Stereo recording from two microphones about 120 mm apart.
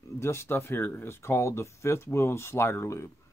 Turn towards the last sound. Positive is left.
turn(degrees=25)  # may be behind; listen again after turning